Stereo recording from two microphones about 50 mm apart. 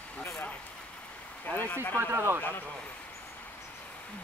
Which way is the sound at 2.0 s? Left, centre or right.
Right.